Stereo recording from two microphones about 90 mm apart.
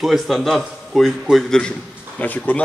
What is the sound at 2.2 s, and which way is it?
Speech, 15° left (ahead or behind).